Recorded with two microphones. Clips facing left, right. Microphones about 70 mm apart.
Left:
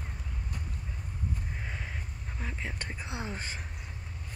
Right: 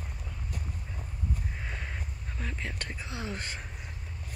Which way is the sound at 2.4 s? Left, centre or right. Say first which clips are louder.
Right 1 dB; centre.